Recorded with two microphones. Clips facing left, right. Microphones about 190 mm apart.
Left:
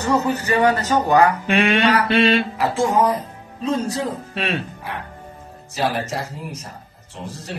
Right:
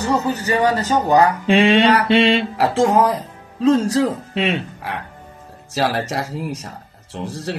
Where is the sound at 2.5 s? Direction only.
75° right (ahead or behind).